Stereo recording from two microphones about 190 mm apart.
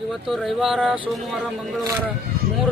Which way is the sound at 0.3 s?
Centre (ahead or behind).